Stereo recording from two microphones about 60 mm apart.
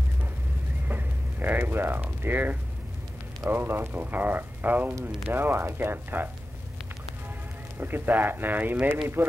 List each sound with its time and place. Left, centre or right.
0.8 s a sound: right
3.4 s speech: right
7.7 s speech: right